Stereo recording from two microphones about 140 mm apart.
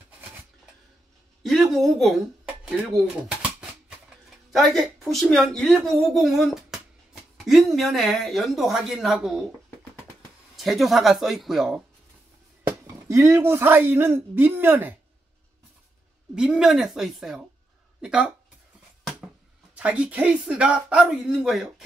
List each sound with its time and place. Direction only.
1.4 s a woman's voice: centre (ahead or behind)
4.5 s speech: centre (ahead or behind)
10.5 s speech: centre (ahead or behind)
12.6 s speech: 25° right (ahead or behind)
16.3 s speech: 5° right (ahead or behind)
19.7 s speech: 10° right (ahead or behind)